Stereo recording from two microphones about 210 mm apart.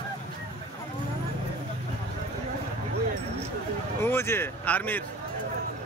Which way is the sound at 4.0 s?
10° left (ahead or behind).